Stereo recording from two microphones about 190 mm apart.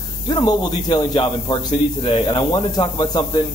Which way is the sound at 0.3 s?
25° left (ahead or behind).